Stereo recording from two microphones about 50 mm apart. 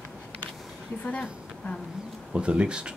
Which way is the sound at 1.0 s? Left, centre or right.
Left.